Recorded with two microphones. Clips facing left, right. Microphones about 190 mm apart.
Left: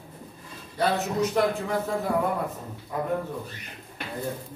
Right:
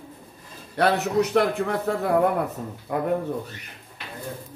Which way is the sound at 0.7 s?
65° right (ahead or behind).